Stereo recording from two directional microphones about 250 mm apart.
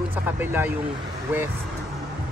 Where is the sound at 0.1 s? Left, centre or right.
Centre.